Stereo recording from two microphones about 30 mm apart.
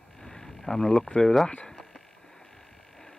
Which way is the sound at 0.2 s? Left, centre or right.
Centre.